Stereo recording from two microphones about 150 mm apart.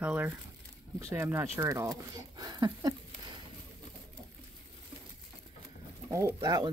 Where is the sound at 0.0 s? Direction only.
10° right (ahead or behind); by 3.3 s 30° right (ahead or behind).